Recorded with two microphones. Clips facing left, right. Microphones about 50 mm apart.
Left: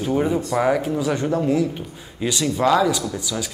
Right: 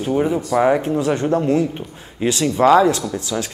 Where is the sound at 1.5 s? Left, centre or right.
Right.